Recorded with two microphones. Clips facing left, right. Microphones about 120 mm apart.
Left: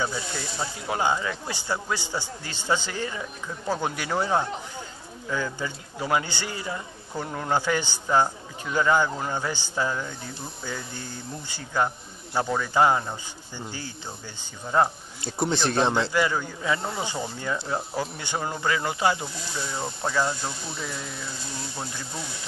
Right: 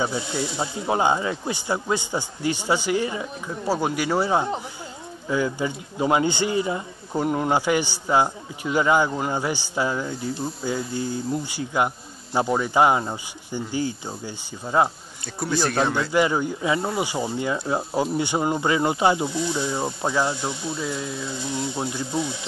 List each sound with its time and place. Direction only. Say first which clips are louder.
0.0 s speech: right 5 dB; 20° right (ahead or behind)
15.3 s speech: right 1 dB; 25° left (ahead or behind)
16.1 s speech: right 4 dB; 20° right (ahead or behind)